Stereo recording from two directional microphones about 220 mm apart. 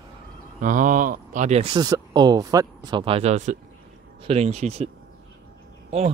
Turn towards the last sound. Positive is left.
turn(degrees=-25)  # may be behind; listen again after turning